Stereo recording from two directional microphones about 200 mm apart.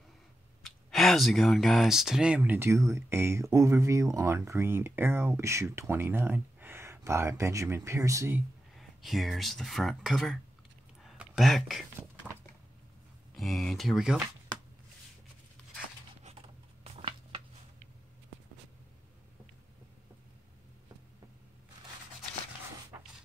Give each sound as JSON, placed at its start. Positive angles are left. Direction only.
{"t": 0.6, "sound": "speech", "side_deg": 0}
{"t": 8.7, "sound": "speech", "side_deg": 0}
{"t": 11.0, "sound": "a sound", "side_deg": 0}
{"t": 12.0, "sound": "a sound", "side_deg": -10}
{"t": 13.3, "sound": "speech", "side_deg": 0}
{"t": 16.3, "sound": "writing", "side_deg": -30}